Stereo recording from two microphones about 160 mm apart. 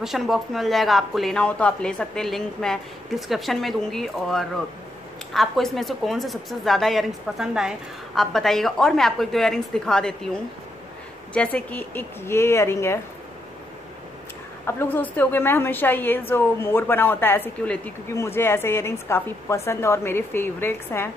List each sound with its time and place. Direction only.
0.0 s a woman's voice: centre (ahead or behind); by 13.0 s 15° left (ahead or behind)
14.7 s a woman's voice: 15° left (ahead or behind)